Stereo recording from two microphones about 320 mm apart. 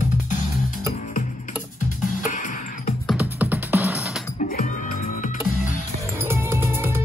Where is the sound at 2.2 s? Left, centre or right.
Left.